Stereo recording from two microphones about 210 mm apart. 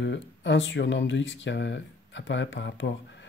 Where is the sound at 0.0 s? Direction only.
60° left (ahead or behind).